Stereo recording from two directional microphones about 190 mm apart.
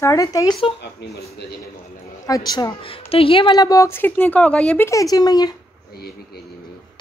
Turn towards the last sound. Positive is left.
turn(degrees=20)  # may be behind; listen again after turning